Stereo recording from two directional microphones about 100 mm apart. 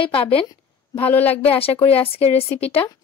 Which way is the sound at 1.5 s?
70° left (ahead or behind).